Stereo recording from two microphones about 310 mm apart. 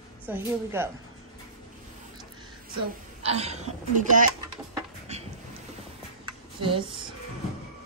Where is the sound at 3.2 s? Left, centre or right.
Centre.